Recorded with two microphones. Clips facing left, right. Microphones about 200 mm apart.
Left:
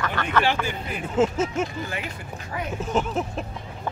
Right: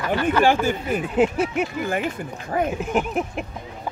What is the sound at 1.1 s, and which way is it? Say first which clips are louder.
Speech: right 1 dB; 15° right (ahead or behind).